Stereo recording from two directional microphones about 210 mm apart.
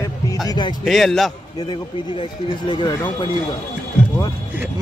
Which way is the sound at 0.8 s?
Centre (ahead or behind).